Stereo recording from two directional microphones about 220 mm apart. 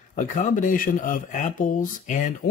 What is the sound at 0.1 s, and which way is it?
Speech, 35° left (ahead or behind).